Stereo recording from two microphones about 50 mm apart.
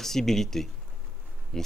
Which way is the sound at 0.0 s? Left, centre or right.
Centre.